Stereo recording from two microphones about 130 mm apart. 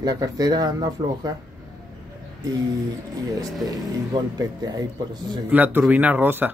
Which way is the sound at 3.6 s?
30° right (ahead or behind).